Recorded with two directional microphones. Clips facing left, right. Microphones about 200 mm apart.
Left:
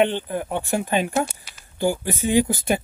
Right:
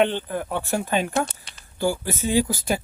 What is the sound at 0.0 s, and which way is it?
Speech, 15° left (ahead or behind).